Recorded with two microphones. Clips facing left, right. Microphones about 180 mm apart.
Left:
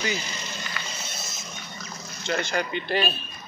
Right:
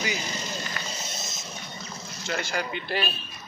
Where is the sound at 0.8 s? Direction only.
40° right (ahead or behind).